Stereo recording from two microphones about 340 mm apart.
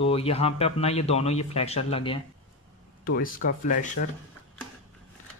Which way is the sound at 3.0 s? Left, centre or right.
Left.